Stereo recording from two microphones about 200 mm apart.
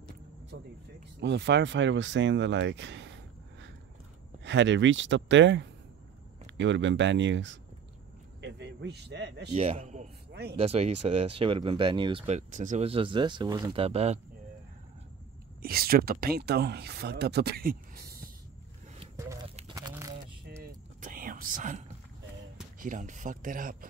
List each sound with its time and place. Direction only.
1.2 s speech: 60° right (ahead or behind)
4.5 s a man's voice: 65° right (ahead or behind)
9.5 s speech: 30° right (ahead or behind)
15.6 s speech: 50° right (ahead or behind)
19.7 s a sound: 15° right (ahead or behind)
21.0 s whispering: 45° right (ahead or behind)
22.8 s speech: 40° right (ahead or behind)